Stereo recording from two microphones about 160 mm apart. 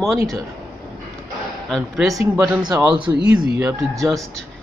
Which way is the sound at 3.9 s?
Centre (ahead or behind).